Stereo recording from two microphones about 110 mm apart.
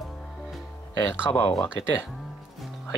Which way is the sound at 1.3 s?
15° left (ahead or behind).